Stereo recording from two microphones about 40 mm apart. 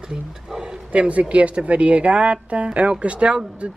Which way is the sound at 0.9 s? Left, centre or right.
Right.